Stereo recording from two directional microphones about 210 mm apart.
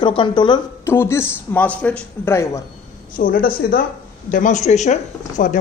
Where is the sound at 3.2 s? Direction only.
45° left (ahead or behind).